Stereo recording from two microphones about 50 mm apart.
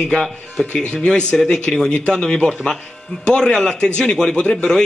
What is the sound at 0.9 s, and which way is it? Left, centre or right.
Speech, centre.